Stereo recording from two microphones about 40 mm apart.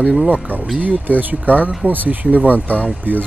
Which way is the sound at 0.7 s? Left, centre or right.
Right.